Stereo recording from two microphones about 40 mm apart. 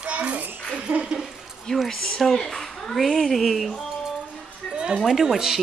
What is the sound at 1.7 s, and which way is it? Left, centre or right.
Speech, centre.